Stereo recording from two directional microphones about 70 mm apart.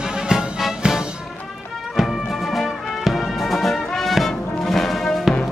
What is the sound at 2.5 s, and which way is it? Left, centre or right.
Music, centre.